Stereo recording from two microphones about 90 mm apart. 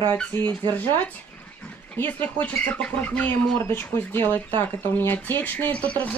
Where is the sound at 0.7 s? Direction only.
15° left (ahead or behind).